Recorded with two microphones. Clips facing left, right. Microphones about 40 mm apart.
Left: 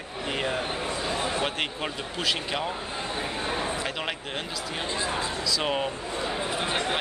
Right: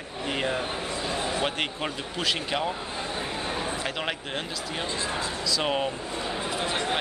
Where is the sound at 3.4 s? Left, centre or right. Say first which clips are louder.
Left 3 dB; centre.